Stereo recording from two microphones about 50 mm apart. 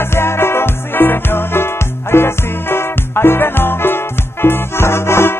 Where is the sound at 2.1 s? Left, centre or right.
Left.